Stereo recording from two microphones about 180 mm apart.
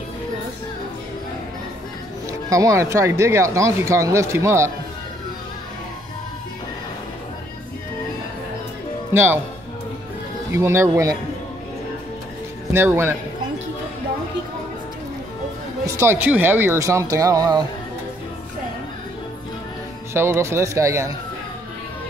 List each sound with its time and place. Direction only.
2.5 s speech: 15° right (ahead or behind)
9.1 s speech: 10° right (ahead or behind)
10.5 s speech: 15° right (ahead or behind)
12.7 s speech: 10° right (ahead or behind)
15.8 s speech: 15° right (ahead or behind)
20.2 s speech: 15° right (ahead or behind)